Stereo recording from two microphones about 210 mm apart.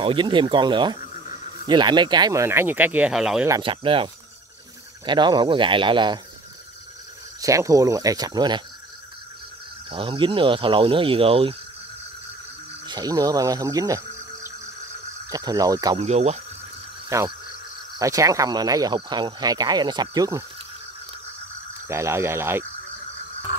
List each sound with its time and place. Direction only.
0.0 s speech: 25° right (ahead or behind); by 3.4 s 5° right (ahead or behind)
3.4 s speech: 20° right (ahead or behind)
7.3 s speech: 15° right (ahead or behind)
9.8 s speech: 25° right (ahead or behind)
12.8 s speech: 20° right (ahead or behind)
16.0 s speech: 30° right (ahead or behind)
17.1 s speech: 15° right (ahead or behind)
21.8 s speech: 10° right (ahead or behind)